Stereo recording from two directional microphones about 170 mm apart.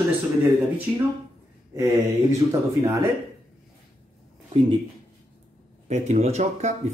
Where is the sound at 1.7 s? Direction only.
15° right (ahead or behind).